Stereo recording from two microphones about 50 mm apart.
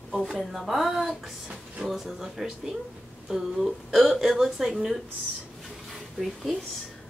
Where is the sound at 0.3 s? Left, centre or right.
Centre.